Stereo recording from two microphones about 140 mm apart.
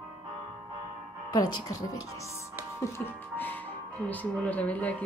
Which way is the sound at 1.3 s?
30° left (ahead or behind).